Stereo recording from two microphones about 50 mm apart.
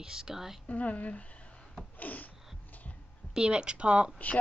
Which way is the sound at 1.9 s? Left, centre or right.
Left.